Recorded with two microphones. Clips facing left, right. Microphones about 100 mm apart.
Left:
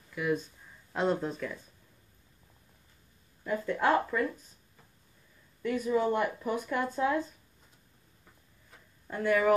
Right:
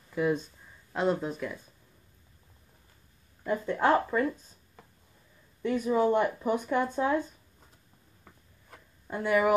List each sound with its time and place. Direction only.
0.1 s speech: 30° right (ahead or behind)
0.9 s speech: 5° right (ahead or behind)
3.4 s speech: 25° right (ahead or behind)
5.6 s speech: 25° right (ahead or behind)
9.0 s speech: 15° right (ahead or behind)